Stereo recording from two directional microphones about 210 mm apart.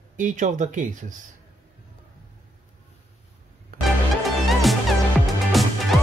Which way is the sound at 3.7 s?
45° right (ahead or behind).